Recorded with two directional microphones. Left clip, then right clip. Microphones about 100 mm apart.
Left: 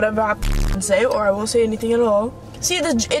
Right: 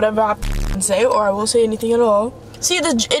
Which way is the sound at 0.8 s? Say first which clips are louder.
Right 2 dB; 20° right (ahead or behind).